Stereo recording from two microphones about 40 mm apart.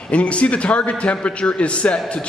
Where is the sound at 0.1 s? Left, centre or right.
Left.